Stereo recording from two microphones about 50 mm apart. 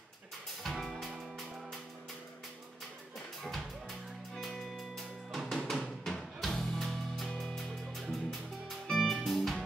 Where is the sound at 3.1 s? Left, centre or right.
Centre.